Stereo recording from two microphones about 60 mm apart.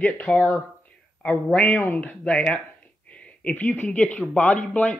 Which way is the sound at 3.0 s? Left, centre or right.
Left.